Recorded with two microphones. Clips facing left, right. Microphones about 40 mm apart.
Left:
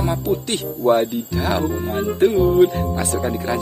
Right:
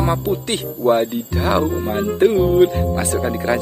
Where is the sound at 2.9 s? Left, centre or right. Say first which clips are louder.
Right 2 dB; right.